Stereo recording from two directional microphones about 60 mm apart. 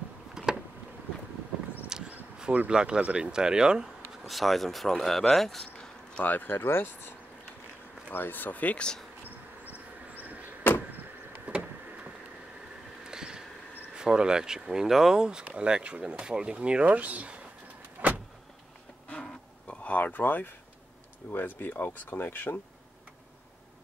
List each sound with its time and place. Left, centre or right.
0.3 s a sound: centre
1.9 s a sound: centre
2.7 s speech: centre
4.2 s speech: centre
6.2 s speech: left
11.5 s vehicle: right
13.0 s a sound: centre
13.9 s speech: centre
18.0 s vehicle: right
19.7 s speech: left